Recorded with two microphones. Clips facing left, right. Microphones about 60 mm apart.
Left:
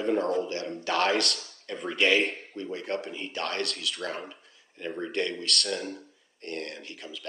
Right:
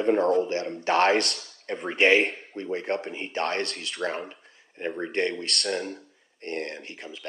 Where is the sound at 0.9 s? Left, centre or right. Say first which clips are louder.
Right 4 dB; right.